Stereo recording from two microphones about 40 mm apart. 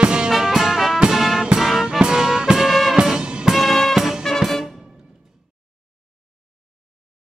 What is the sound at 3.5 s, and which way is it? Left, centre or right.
Music, centre.